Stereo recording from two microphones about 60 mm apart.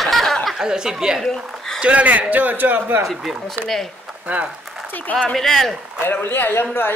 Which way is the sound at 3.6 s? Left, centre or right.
Right.